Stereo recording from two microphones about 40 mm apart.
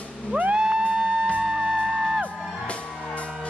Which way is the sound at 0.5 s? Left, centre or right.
Right.